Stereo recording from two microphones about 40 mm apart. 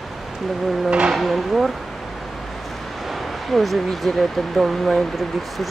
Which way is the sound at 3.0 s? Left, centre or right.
Centre.